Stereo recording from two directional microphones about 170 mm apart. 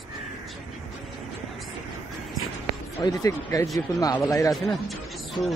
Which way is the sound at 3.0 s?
20° left (ahead or behind).